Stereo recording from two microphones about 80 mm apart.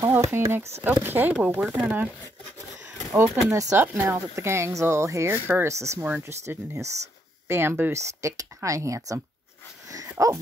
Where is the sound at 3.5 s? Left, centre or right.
Right.